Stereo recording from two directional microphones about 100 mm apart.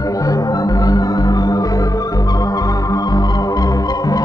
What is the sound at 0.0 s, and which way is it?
Organ, 35° left (ahead or behind).